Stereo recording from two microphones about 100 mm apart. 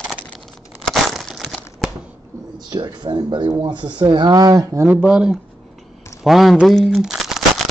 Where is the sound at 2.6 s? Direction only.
45° right (ahead or behind).